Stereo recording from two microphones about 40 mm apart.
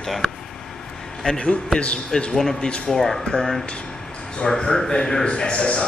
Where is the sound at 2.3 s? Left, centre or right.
Centre.